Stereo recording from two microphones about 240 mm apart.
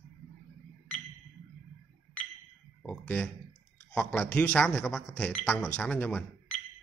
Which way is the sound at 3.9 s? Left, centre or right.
Centre.